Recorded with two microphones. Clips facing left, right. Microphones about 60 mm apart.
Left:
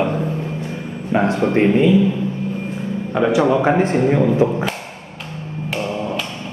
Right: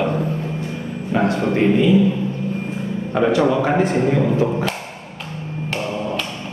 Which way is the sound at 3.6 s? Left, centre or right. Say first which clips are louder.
Left 2 dB; left.